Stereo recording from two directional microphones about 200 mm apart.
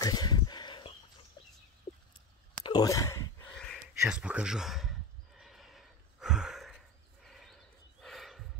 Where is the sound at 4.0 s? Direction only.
5° right (ahead or behind).